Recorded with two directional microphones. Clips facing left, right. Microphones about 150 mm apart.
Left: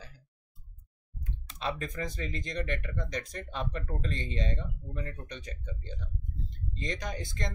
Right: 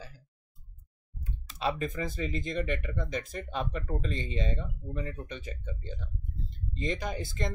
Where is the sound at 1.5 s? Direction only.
5° right (ahead or behind).